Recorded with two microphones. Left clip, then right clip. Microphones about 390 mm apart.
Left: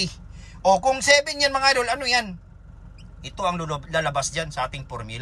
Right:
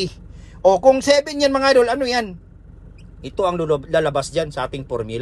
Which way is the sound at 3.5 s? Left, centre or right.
Centre.